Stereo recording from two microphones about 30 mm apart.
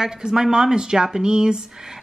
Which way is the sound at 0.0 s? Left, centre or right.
Centre.